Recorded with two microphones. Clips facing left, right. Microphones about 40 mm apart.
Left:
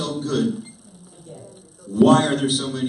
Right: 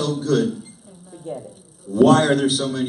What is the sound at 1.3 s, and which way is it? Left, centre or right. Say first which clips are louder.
Speech: right 11 dB; right.